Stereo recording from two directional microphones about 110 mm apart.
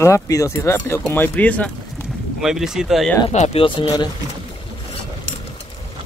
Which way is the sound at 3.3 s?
85° left.